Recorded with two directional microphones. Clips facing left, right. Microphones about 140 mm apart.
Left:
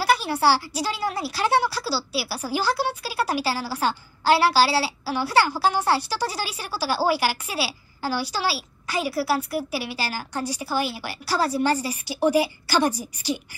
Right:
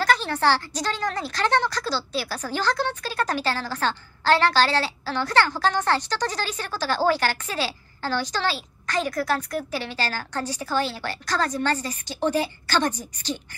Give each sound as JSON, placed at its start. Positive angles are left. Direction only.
{"t": 0.0, "sound": "speech", "side_deg": 10}